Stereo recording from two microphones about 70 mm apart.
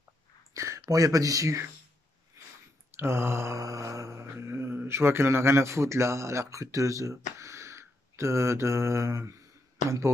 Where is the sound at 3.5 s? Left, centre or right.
Right.